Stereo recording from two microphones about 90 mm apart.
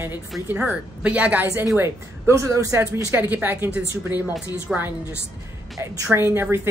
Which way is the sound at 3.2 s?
20° right (ahead or behind).